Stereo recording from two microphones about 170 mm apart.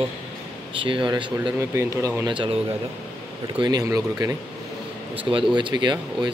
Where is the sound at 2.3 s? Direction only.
30° right (ahead or behind).